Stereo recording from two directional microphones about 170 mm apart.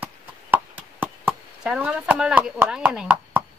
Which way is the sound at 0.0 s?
10° right (ahead or behind).